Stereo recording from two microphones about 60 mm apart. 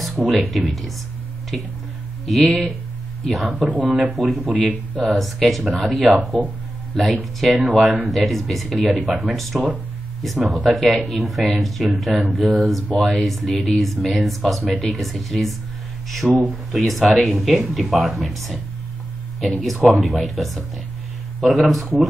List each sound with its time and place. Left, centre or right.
0.0 s speech: centre
2.2 s speech: centre
3.6 s speech: right
4.1 s speech: centre